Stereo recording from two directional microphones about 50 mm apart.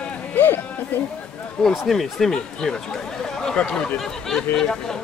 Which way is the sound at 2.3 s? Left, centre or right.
Centre.